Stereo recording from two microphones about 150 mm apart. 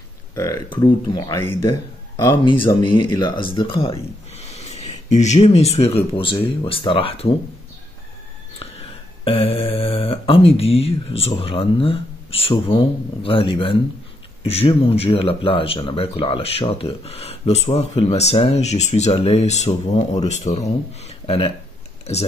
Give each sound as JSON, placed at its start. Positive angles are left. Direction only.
{"t": 0.3, "sound": "speech", "side_deg": 20}
{"t": 1.3, "sound": "speech", "side_deg": 15}
{"t": 2.7, "sound": "speech", "side_deg": 30}
{"t": 9.2, "sound": "speech", "side_deg": 40}